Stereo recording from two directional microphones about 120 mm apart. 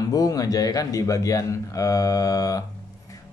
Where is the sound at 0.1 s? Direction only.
30° left (ahead or behind).